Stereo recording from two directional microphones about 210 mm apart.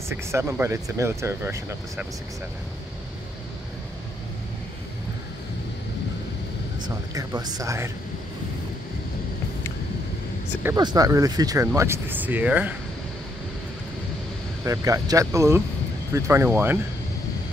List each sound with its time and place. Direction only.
0.1 s speech: 10° right (ahead or behind)
7.2 s speech: 20° right (ahead or behind)
10.6 s speech: 15° right (ahead or behind)
14.6 s speech: 15° right (ahead or behind)